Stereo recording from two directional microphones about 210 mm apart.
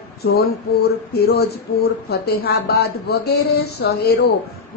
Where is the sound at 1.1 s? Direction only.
50° left (ahead or behind).